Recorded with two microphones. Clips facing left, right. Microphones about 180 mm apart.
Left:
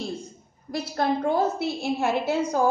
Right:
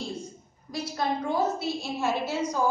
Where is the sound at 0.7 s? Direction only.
60° left (ahead or behind).